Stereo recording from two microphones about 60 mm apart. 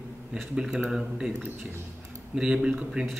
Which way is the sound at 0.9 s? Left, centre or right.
Centre.